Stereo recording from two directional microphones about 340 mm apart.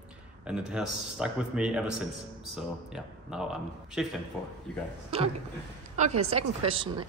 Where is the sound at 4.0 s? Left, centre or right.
Centre.